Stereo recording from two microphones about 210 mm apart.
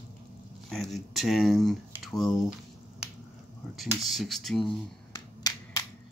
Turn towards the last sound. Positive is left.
turn(degrees=20)  # may be behind; listen again after turning